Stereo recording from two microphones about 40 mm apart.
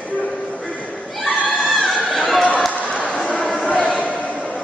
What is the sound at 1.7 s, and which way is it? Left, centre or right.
Chatter, centre.